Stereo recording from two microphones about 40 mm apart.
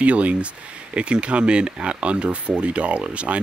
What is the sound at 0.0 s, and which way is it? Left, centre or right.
Speech, right.